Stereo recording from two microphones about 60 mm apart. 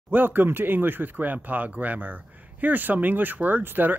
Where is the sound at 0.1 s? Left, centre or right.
Right.